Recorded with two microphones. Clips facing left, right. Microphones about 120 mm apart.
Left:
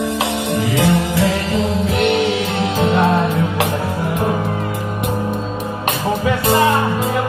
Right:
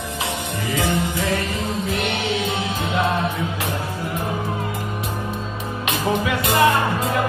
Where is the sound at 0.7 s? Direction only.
90° left.